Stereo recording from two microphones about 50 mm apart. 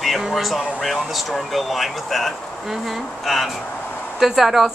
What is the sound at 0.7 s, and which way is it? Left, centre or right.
Speech, centre.